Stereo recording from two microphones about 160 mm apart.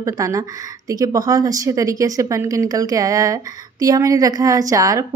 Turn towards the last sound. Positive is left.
turn(degrees=-20)  # may be behind; listen again after turning